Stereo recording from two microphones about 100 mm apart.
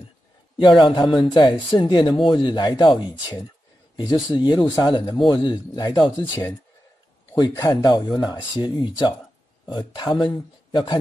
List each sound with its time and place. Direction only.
0.6 s speech: 55° left (ahead or behind)
7.3 s speech: 40° left (ahead or behind)